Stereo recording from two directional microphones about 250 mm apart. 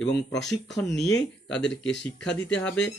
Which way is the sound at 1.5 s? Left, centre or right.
Left.